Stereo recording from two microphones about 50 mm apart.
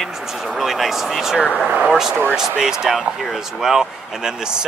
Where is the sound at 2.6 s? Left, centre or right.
Centre.